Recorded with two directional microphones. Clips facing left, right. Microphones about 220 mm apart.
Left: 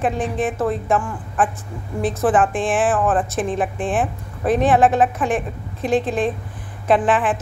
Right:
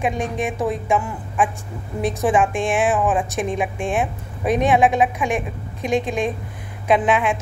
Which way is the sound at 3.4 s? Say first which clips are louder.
Left 1 dB; 10° right (ahead or behind).